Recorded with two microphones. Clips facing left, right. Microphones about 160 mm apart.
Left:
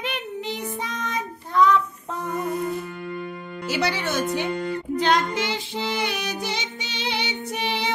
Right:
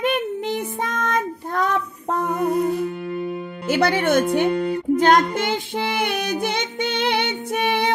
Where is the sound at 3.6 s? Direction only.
55° right (ahead or behind).